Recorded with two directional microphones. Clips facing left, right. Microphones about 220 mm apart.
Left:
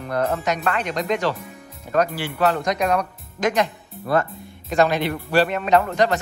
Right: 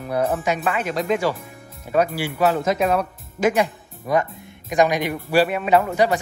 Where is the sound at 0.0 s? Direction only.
10° right (ahead or behind).